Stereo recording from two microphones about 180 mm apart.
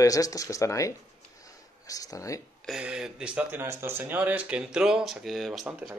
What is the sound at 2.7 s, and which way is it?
Speech, 5° right (ahead or behind).